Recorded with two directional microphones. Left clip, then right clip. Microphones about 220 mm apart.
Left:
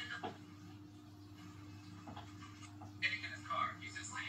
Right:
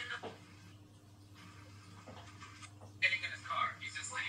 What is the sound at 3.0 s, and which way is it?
Television, 45° right (ahead or behind).